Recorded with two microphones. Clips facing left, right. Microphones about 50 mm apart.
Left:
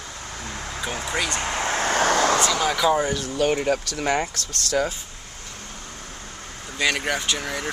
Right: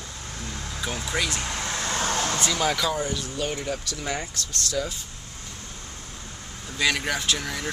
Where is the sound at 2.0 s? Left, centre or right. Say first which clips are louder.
Left 8 dB; left.